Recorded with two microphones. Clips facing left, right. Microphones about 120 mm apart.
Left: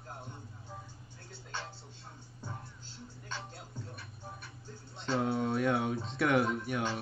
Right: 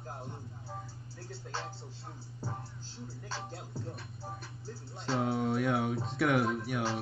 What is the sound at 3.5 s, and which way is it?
Music, 30° right (ahead or behind).